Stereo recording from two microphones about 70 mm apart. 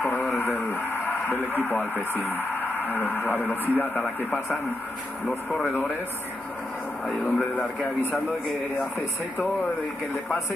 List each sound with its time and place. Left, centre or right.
0.0 s radio: left
0.6 s speech: left
7.1 s speech: centre